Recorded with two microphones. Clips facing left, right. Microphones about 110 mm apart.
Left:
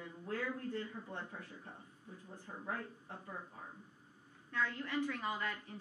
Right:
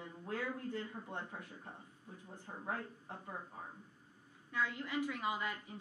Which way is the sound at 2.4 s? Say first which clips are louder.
Right 1 dB; 35° right (ahead or behind).